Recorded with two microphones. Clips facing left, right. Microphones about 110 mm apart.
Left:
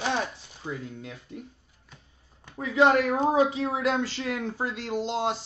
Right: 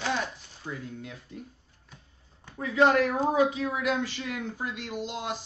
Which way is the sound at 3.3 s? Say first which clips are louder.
Left 2 dB; 30° left (ahead or behind).